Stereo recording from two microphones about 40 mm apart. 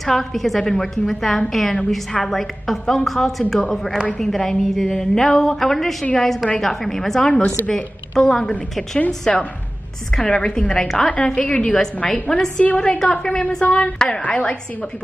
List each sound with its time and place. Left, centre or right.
0.1 s a woman's voice: centre
11.3 s a woman's voice: left
12.1 s a woman's voice: centre